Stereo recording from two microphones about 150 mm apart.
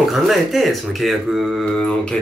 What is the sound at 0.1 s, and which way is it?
Speech, centre (ahead or behind).